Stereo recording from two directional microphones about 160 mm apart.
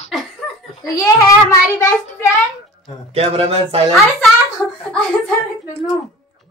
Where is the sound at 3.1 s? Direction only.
40° right (ahead or behind).